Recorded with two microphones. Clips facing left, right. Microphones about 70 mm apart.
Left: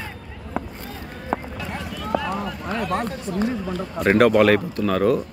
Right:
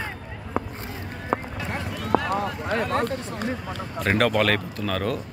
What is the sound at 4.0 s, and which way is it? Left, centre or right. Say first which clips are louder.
Speech: left 6 dB; centre.